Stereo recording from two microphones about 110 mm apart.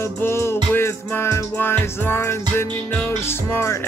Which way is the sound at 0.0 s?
25° left (ahead or behind).